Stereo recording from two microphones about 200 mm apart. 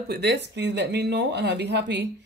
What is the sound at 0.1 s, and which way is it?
Speech, 60° right (ahead or behind).